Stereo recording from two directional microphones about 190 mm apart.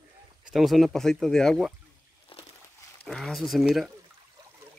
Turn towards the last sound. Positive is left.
turn(degrees=0)  # may be behind; listen again after turning